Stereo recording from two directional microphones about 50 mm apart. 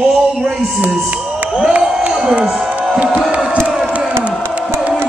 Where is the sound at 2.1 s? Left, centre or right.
Centre.